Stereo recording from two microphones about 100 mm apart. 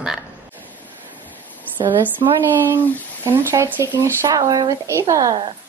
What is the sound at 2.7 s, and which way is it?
A woman's voice, 25° right (ahead or behind).